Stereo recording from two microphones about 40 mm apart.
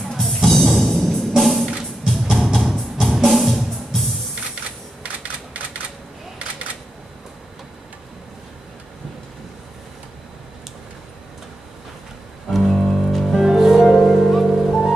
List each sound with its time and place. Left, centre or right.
0.1 s music: centre
5.0 s typewriter: right
12.5 s music: centre
13.5 s music: centre
13.8 s music: centre